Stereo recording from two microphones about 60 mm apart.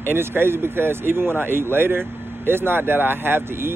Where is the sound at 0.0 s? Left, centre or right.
Right.